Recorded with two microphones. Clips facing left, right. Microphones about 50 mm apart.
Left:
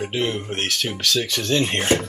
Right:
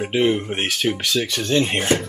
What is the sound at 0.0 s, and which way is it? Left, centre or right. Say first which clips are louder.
Speech: right 5 dB; centre.